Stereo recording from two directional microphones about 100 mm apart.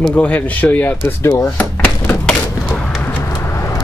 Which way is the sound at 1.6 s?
20° left (ahead or behind).